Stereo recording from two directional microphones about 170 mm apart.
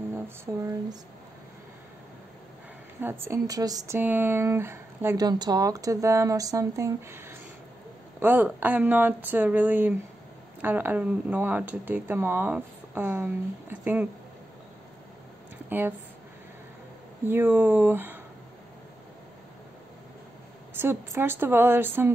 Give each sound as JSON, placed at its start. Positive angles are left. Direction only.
{"t": 0.1, "sound": "a sound", "side_deg": -20}
{"t": 3.0, "sound": "speech", "side_deg": -15}
{"t": 17.3, "sound": "speech", "side_deg": -10}
{"t": 20.7, "sound": "speech", "side_deg": -15}